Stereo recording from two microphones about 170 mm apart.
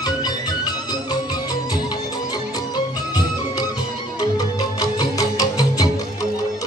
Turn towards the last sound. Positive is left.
turn(degrees=20)  # may be behind; listen again after turning